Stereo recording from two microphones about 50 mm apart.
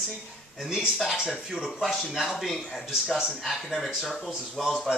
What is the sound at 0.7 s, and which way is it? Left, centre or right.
Speech, centre.